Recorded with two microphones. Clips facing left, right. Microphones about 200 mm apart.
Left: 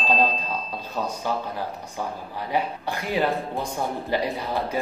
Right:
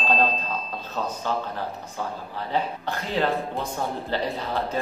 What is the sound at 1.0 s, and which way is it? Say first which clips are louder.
A man's voice: even; 10° left (ahead or behind).